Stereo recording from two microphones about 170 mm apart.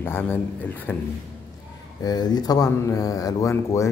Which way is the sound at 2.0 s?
25° left (ahead or behind).